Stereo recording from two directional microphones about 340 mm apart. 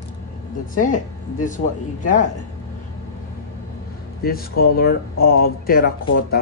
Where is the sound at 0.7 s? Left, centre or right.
Left.